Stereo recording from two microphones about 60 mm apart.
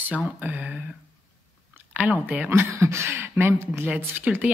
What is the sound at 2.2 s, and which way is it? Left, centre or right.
Speech, right.